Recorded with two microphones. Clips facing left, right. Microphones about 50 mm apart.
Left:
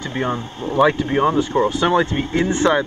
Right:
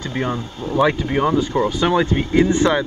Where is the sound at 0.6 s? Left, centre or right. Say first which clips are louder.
Left 2 dB; left.